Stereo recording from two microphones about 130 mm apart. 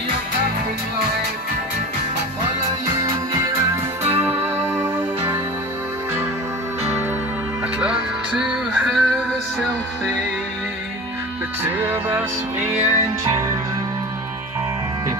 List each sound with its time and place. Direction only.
4.2 s music: 15° right (ahead or behind)
7.8 s music: 5° right (ahead or behind)
11.8 s music: 15° right (ahead or behind)